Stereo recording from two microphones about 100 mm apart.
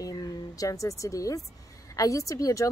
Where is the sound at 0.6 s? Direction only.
35° left (ahead or behind).